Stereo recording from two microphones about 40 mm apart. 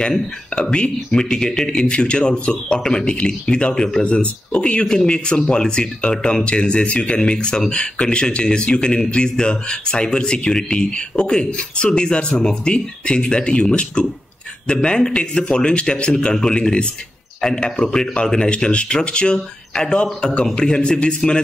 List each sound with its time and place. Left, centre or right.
0.6 s speech: left